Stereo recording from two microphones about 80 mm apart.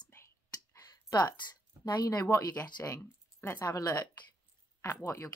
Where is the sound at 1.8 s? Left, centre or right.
Left.